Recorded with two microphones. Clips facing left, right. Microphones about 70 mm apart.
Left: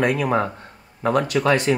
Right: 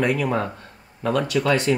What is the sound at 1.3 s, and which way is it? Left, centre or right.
Speech, left.